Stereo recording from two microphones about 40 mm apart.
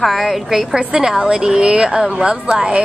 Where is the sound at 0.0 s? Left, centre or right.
Centre.